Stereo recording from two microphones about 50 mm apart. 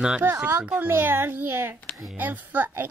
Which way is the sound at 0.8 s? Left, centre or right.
Right.